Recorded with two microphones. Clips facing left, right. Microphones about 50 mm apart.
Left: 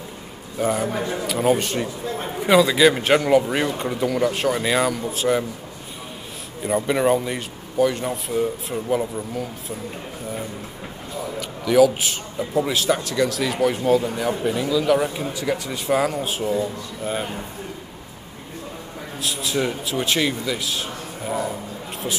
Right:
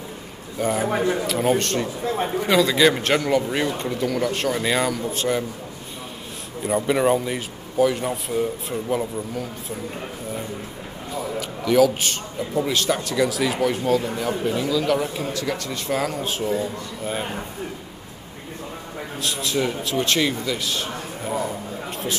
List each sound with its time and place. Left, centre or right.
0.6 s a man's voice: centre
0.9 s a man's voice: centre
1.2 s a man's voice: centre
6.6 s a man's voice: centre
11.3 s a man's voice: centre
19.1 s a man's voice: centre